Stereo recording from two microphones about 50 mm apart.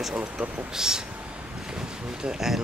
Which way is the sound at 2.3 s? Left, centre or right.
Centre.